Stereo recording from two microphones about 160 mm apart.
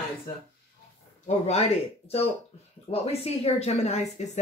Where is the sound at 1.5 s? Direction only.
40° left (ahead or behind).